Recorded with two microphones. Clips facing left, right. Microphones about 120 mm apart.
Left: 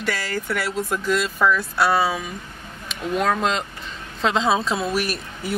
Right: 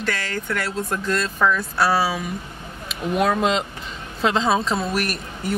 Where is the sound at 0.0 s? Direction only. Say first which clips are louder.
Even; 5° left (ahead or behind).